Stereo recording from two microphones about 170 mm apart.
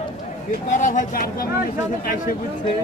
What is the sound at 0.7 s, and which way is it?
Speech, 50° left (ahead or behind).